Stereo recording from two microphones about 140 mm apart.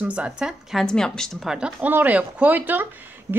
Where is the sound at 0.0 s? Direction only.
10° right (ahead or behind).